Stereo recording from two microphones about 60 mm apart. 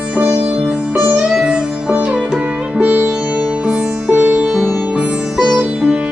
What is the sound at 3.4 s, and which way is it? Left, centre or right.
Music, centre.